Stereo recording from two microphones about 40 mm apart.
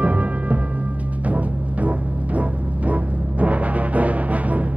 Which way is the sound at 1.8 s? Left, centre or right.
Right.